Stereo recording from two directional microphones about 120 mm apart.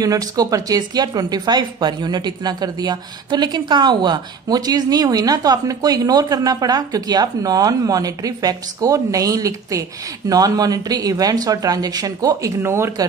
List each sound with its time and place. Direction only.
0.0 s speech: 30° right (ahead or behind)